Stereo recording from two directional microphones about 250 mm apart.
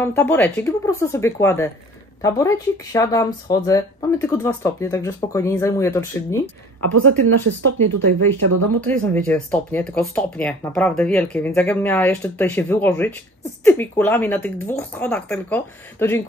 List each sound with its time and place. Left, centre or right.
0.1 s speech: centre
6.9 s speech: right
8.8 s speech: centre